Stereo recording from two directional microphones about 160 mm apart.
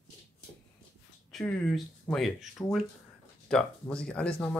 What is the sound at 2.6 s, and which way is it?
Speech, 15° left (ahead or behind).